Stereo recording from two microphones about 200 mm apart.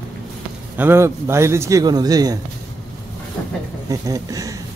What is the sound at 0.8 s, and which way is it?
Speech, 10° right (ahead or behind).